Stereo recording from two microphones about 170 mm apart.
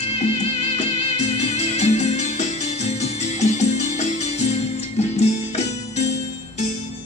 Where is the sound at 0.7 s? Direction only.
40° left (ahead or behind).